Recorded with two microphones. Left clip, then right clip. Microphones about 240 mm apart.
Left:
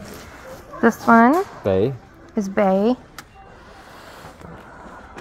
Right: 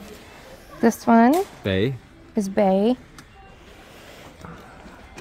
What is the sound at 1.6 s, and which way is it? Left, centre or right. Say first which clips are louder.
Speech: left 4 dB; right.